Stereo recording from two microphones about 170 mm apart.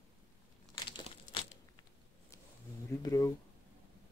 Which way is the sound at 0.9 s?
30° left (ahead or behind).